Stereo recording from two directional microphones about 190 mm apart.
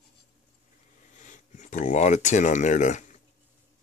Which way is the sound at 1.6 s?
40° left (ahead or behind).